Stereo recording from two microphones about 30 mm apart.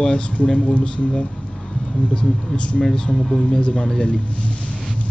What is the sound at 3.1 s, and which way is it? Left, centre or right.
Speech, centre.